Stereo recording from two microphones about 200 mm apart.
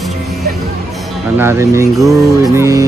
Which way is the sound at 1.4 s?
15° right (ahead or behind).